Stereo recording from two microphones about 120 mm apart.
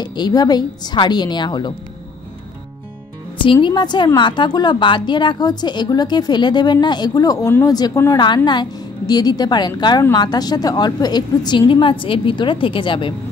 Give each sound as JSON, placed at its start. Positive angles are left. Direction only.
{"t": 0.0, "sound": "a woman's voice", "side_deg": 35}
{"t": 3.6, "sound": "a woman's voice", "side_deg": 35}